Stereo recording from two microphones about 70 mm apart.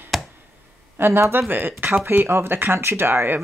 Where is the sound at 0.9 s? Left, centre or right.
Right.